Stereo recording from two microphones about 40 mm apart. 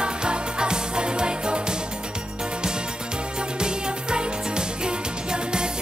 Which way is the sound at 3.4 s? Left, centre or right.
Right.